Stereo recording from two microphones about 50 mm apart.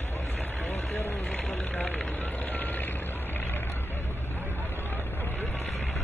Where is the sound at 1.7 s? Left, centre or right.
Left.